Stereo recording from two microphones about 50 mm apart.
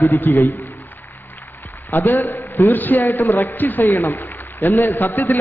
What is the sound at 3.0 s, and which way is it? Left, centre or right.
Speech, left.